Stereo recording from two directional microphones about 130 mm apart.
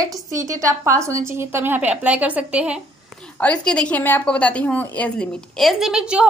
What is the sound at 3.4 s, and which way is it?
A woman's voice, 10° left (ahead or behind).